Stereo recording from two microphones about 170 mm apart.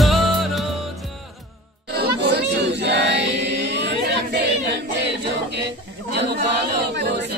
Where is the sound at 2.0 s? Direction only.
70° right (ahead or behind); by 3.3 s 90° right.